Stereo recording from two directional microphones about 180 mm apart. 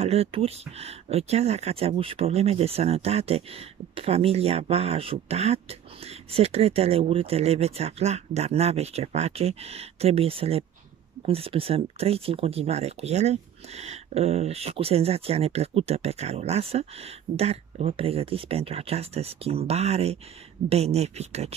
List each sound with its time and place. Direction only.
0.0 s speech: 35° right (ahead or behind)